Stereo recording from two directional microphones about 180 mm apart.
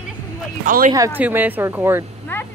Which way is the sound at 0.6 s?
50° right (ahead or behind).